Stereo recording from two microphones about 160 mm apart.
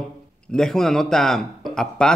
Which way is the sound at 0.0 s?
5° left (ahead or behind).